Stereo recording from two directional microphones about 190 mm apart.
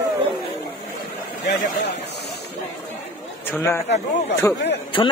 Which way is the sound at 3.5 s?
15° left (ahead or behind).